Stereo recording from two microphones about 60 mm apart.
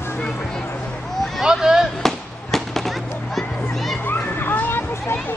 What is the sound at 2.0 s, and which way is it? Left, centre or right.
Fireworks, centre.